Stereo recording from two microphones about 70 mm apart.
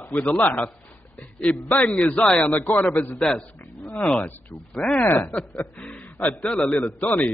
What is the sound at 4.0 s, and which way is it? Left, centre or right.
Speech, left.